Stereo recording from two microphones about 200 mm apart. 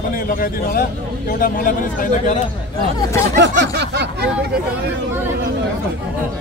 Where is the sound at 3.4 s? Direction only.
60° right (ahead or behind).